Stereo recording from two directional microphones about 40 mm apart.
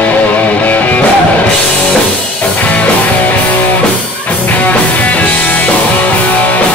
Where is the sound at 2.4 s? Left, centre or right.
Left.